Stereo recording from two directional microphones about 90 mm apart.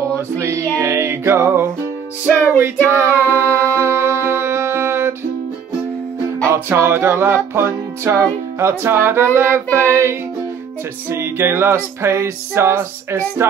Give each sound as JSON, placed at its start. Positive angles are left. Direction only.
{"t": 0.4, "sound": "music", "side_deg": -35}
{"t": 6.4, "sound": "music", "side_deg": -30}